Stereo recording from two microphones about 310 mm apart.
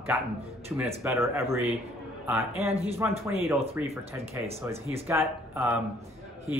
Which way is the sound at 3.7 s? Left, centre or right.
Centre.